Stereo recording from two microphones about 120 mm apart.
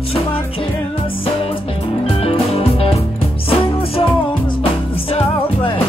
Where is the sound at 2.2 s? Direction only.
55° left (ahead or behind).